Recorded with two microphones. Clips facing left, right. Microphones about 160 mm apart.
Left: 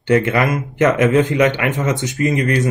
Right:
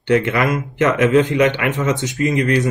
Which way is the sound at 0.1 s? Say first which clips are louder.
Left 1 dB; 50° left (ahead or behind).